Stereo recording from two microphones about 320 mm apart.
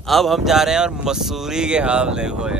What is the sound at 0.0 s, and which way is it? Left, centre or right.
Speech, centre.